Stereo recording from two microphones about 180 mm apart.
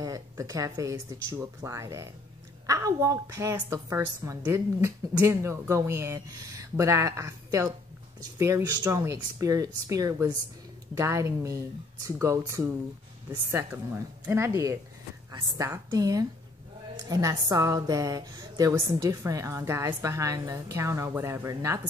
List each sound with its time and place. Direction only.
0.0 s a woman's voice: 20° right (ahead or behind)